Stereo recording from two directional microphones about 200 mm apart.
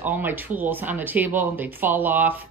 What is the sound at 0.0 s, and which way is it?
Speech, 10° right (ahead or behind).